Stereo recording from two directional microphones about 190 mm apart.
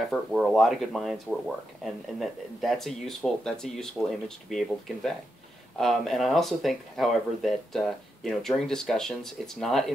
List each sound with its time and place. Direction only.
0.1 s speech: centre (ahead or behind)